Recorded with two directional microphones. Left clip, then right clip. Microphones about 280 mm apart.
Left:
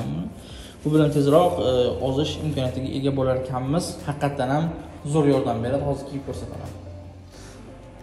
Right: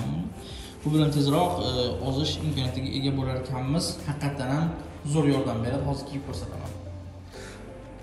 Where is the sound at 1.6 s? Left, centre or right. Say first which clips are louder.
Left 7 dB; left.